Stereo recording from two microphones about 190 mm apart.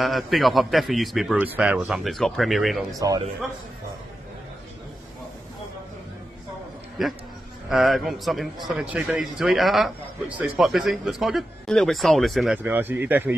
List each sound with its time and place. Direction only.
0.0 s a man's voice: centre (ahead or behind)
3.0 s speech: 20° right (ahead or behind)
7.0 s a man's voice: centre (ahead or behind)
12.6 s speech: 10° right (ahead or behind)